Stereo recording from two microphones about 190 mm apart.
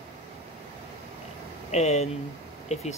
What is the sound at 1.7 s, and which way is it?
Speech, 35° left (ahead or behind).